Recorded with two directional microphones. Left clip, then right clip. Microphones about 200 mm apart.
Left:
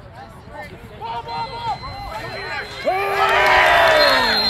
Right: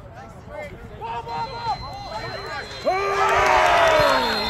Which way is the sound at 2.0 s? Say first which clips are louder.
Left 2 dB; 60° right (ahead or behind).